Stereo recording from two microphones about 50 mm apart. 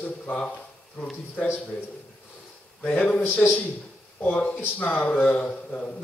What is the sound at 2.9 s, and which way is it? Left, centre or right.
Speech, left.